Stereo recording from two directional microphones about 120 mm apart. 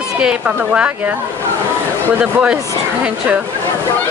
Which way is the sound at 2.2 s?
15° right (ahead or behind).